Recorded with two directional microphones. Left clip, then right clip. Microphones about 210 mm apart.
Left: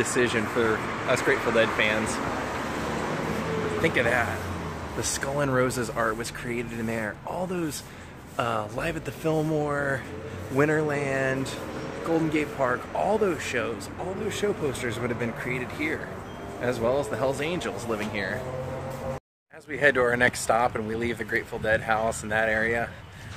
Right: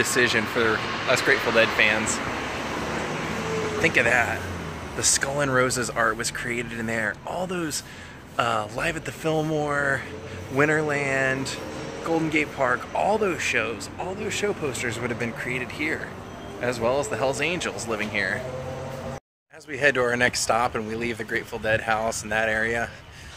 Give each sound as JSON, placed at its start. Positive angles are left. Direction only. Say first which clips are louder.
{"t": 0.0, "sound": "speech", "louder": "right 3 dB", "side_deg": 5}
{"t": 3.8, "sound": "speech", "louder": "right 4 dB", "side_deg": 5}
{"t": 19.7, "sound": "speech", "louder": "even", "side_deg": 15}